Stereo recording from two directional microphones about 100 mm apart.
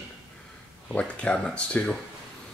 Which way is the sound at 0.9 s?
15° left (ahead or behind).